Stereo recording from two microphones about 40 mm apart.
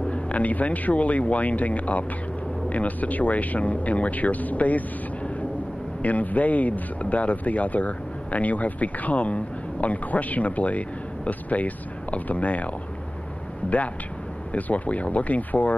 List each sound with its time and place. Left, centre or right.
0.1 s speech: left
14.5 s speech: left